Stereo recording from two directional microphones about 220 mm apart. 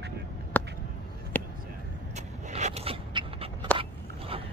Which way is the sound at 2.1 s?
30° right (ahead or behind).